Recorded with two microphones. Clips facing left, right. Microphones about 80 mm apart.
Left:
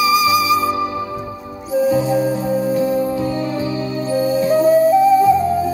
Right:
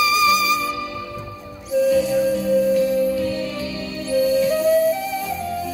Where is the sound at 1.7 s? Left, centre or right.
Left.